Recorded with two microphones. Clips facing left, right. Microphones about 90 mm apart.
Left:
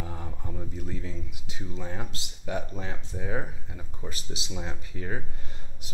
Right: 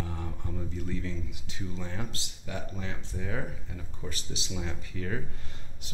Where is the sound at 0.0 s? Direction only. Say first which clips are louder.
Even; 15° left (ahead or behind).